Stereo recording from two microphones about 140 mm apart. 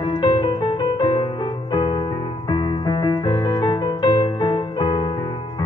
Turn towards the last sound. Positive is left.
turn(degrees=30)  # may be behind; listen again after turning